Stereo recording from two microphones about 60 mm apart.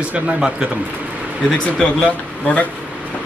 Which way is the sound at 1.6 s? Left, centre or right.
Centre.